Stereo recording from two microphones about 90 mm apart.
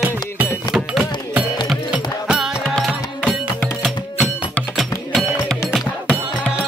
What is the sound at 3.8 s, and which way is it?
Music, 5° left (ahead or behind).